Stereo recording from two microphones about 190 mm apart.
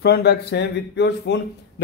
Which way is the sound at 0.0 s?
60° left (ahead or behind).